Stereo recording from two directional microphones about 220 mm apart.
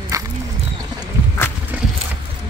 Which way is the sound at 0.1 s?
15° right (ahead or behind).